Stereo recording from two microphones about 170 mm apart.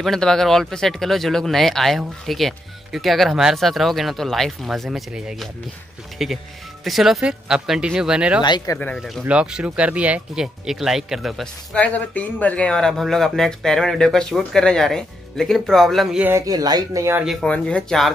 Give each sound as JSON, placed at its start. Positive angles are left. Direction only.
{"t": 0.0, "sound": "speech", "side_deg": 5}
{"t": 8.4, "sound": "speech", "side_deg": 25}
{"t": 8.7, "sound": "speech", "side_deg": 5}
{"t": 16.3, "sound": "speech", "side_deg": -20}
{"t": 17.2, "sound": "speech", "side_deg": 0}